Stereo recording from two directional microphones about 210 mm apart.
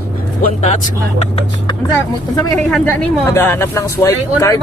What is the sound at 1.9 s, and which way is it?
Speech, 15° left (ahead or behind).